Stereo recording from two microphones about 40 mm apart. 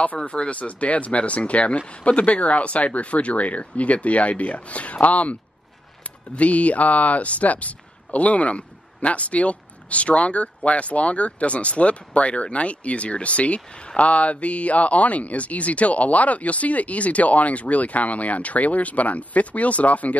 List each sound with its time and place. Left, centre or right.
0.0 s speech: left